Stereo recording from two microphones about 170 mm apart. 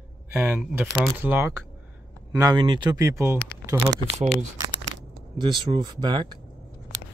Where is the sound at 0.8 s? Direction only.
Centre (ahead or behind).